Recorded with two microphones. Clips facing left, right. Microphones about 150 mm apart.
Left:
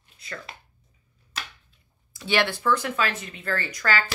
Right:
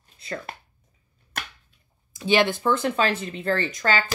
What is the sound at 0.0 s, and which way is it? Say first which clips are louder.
Chopping: right 6 dB; 35° right (ahead or behind).